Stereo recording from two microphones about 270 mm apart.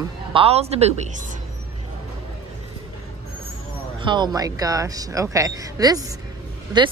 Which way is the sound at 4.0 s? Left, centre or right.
Centre.